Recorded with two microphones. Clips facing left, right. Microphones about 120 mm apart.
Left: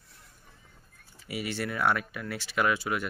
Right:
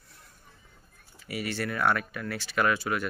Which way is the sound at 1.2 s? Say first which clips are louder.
Right 1 dB; 20° left (ahead or behind).